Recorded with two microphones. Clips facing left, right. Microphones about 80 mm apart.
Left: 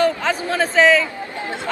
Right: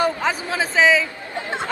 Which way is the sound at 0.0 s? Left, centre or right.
Centre.